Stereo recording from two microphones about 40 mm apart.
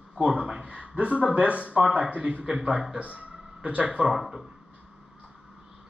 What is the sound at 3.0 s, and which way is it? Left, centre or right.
Speech, right.